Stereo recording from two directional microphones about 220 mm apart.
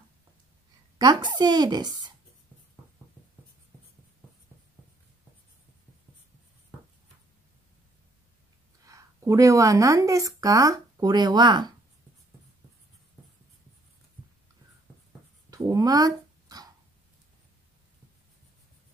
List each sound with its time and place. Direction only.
0.9 s a woman's voice: 20° right (ahead or behind)
8.8 s speech: 15° right (ahead or behind)
15.5 s dog: 15° right (ahead or behind)